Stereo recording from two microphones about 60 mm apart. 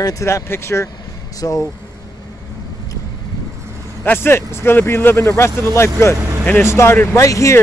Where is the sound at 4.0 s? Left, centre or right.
Left.